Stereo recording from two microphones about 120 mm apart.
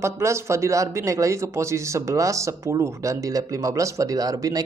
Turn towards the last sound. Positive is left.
turn(degrees=-30)  # may be behind; listen again after turning